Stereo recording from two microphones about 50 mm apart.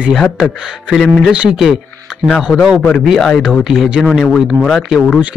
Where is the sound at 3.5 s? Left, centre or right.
Centre.